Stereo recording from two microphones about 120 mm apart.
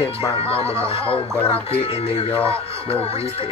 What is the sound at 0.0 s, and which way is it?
Speech, 55° left (ahead or behind).